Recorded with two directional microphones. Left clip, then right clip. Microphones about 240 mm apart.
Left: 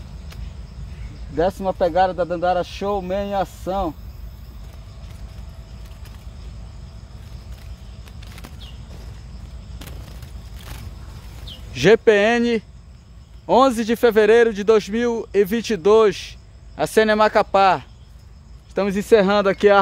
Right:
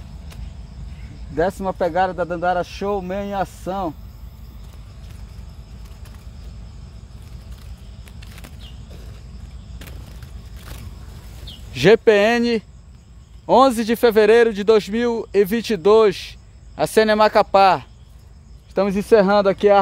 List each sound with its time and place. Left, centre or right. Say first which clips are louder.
1.3 s a man's voice: even; right
8.0 s a sound: even; centre
11.7 s a man's voice: right 1 dB; centre